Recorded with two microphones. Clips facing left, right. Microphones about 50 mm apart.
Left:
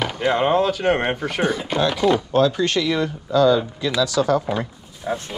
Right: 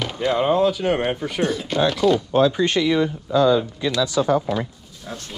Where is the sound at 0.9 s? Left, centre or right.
Centre.